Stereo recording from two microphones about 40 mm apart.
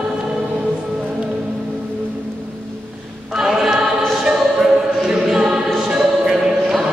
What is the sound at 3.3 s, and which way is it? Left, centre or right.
Choir, centre.